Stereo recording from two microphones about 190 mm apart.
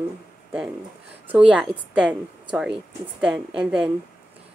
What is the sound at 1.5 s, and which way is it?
Speech, 5° right (ahead or behind).